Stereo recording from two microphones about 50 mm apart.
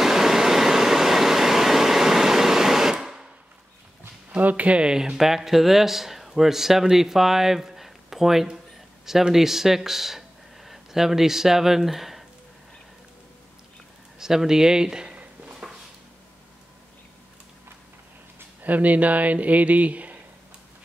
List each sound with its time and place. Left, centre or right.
0.0 s vehicle: centre
4.4 s speech: right; by 12.3 s centre
14.2 s speech: centre
15.6 s a sound: centre
18.6 s speech: right